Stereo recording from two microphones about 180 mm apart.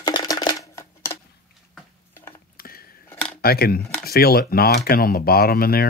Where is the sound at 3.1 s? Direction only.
5° left (ahead or behind).